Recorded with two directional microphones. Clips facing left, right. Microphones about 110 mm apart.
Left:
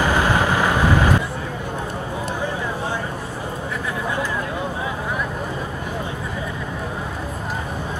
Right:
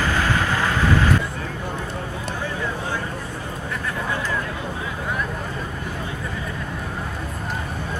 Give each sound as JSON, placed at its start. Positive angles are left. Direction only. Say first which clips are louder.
{"t": 0.0, "sound": "vehicle", "louder": "left 4 dB", "side_deg": 15}